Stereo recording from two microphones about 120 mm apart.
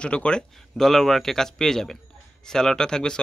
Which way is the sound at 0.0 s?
10° left (ahead or behind).